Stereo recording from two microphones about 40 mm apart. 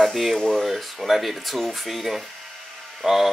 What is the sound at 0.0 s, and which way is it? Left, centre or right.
Speech, centre.